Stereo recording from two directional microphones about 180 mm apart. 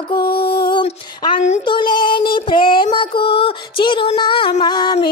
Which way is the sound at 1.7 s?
25° left (ahead or behind).